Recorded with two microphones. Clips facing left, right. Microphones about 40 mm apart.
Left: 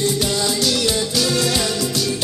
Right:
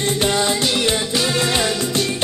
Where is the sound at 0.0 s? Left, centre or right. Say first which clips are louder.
Right 2 dB; right.